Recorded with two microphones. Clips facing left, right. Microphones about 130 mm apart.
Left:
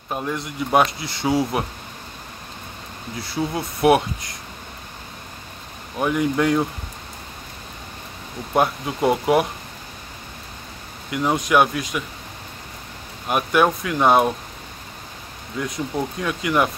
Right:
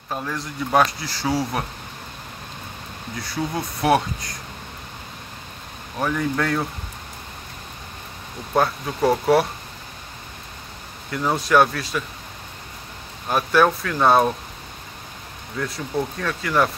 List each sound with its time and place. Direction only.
0.1 s speech: 20° left (ahead or behind)
3.2 s speech: 25° left (ahead or behind)
5.9 s speech: 15° left (ahead or behind)
8.5 s speech: 15° left (ahead or behind)
11.1 s speech: 10° left (ahead or behind)
13.3 s speech: 15° left (ahead or behind)
15.6 s speech: 15° left (ahead or behind)